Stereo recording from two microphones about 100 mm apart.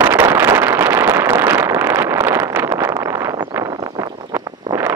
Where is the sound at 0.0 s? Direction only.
25° right (ahead or behind).